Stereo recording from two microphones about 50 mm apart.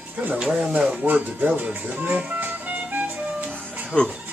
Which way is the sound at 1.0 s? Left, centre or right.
Right.